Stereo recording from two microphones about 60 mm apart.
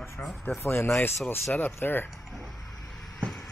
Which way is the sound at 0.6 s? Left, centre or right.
Left.